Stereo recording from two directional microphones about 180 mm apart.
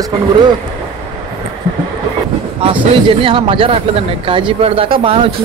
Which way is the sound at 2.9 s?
30° right (ahead or behind).